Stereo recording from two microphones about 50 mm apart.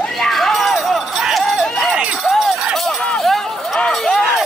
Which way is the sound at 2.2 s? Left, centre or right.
Centre.